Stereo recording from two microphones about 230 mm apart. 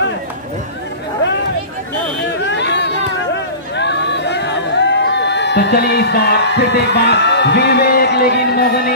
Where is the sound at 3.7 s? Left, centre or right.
Left.